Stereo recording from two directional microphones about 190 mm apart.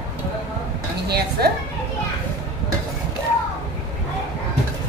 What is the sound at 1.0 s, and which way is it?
Speech, 55° right (ahead or behind).